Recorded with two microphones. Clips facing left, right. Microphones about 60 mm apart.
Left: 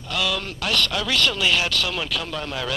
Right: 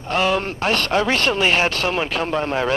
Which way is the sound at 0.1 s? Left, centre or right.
Right.